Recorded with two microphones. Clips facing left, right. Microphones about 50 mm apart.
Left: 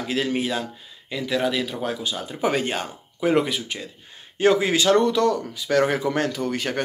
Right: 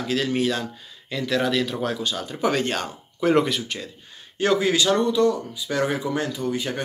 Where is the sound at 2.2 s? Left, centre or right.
Left.